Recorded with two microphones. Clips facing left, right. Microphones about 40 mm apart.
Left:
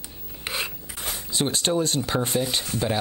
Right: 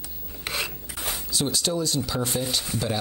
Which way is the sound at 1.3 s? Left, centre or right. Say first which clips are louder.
Left 3 dB; left.